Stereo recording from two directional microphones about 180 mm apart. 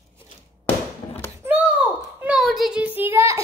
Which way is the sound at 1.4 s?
10° right (ahead or behind).